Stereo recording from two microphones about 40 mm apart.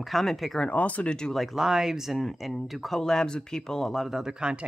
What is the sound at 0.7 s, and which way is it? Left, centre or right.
Speech, left.